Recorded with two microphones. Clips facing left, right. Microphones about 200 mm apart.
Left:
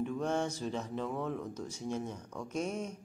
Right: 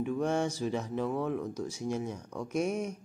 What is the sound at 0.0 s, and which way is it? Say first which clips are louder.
Speech: right 3 dB; 10° right (ahead or behind).